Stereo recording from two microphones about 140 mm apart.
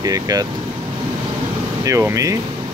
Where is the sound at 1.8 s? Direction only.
20° right (ahead or behind).